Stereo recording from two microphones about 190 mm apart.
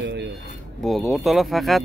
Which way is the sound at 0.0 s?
65° right (ahead or behind).